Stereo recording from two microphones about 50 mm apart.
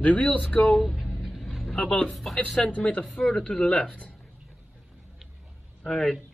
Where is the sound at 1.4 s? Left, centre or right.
Centre.